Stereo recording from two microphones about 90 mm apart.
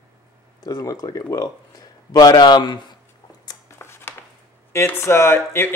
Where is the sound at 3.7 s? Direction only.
30° left (ahead or behind).